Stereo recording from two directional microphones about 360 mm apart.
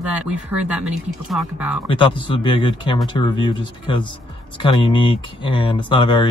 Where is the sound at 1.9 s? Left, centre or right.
Centre.